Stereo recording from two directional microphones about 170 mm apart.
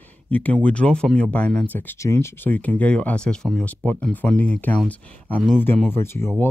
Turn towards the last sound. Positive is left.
turn(degrees=15)  # may be behind; listen again after turning